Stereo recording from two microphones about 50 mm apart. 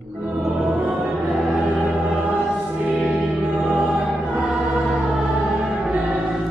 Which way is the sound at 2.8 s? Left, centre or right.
Right.